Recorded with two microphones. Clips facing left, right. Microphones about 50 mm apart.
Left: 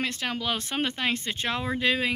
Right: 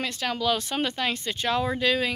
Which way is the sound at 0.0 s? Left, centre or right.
Left.